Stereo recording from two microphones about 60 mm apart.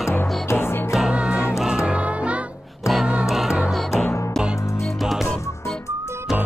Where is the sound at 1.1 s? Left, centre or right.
Centre.